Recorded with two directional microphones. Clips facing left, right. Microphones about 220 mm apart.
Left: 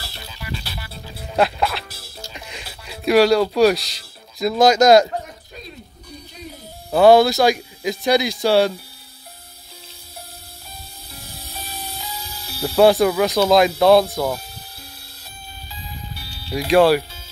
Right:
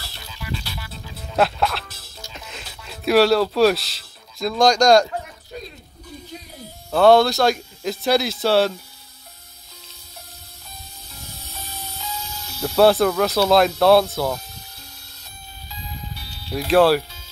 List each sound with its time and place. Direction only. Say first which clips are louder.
0.0 s music: left 1 dB; 30° left (ahead or behind)
1.1 s music: left 1 dB; centre (ahead or behind)
2.3 s a sound: left 2 dB; centre (ahead or behind)
7.0 s speech: left 2 dB; centre (ahead or behind)
11.1 s music: left 2 dB; 30° left (ahead or behind)
12.6 s speech: left 1 dB; 5° left (ahead or behind)
16.2 s music: left 2 dB; 5° left (ahead or behind)